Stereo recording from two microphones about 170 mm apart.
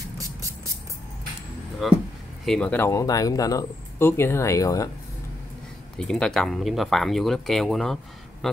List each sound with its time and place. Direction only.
1.8 s speech: centre (ahead or behind); by 4.8 s 20° left (ahead or behind)
5.9 s speech: 5° left (ahead or behind)